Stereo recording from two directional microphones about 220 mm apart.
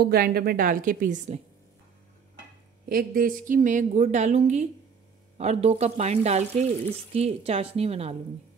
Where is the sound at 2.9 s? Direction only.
40° right (ahead or behind).